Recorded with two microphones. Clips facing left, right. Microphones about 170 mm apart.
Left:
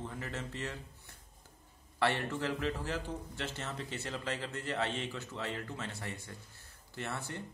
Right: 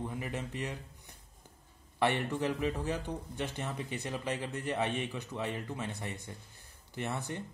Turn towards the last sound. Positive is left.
turn(degrees=-20)  # may be behind; listen again after turning